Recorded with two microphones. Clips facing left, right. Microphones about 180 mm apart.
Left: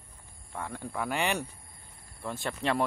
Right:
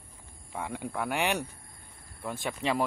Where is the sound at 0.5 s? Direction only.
10° right (ahead or behind).